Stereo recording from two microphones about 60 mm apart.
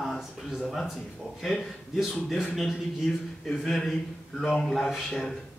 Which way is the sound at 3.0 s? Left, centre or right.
Centre.